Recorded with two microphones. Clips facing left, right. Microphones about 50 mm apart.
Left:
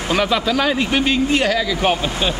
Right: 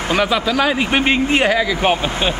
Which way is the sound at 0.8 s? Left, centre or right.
Right.